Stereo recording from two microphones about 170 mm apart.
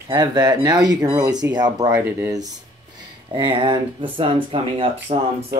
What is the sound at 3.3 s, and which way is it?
Speech, 30° right (ahead or behind).